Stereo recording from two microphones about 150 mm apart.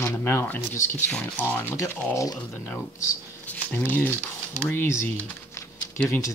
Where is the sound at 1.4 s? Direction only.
15° left (ahead or behind).